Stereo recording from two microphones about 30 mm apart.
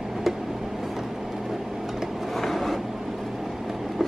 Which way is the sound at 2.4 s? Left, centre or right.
Centre.